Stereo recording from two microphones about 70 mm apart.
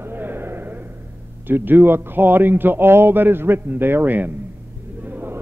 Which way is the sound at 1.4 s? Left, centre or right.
Right.